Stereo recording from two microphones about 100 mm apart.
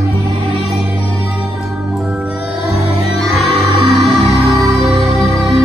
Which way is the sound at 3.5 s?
90° right.